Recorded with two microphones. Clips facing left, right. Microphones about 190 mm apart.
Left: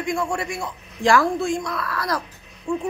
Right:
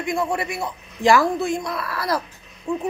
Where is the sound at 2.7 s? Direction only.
20° right (ahead or behind).